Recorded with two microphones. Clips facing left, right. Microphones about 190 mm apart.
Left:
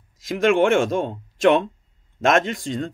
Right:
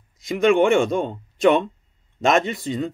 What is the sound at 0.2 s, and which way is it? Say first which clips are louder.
Speech: right 1 dB; centre (ahead or behind).